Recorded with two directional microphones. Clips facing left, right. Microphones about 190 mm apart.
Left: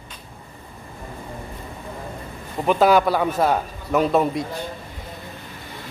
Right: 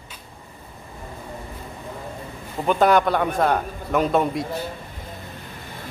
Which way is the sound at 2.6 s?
5° left (ahead or behind).